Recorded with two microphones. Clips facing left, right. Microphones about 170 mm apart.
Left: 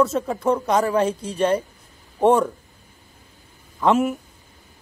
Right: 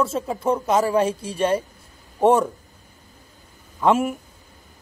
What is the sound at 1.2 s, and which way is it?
Speech, 10° right (ahead or behind).